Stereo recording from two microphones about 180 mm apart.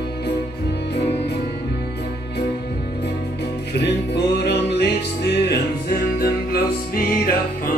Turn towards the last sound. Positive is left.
turn(degrees=55)  # may be behind; listen again after turning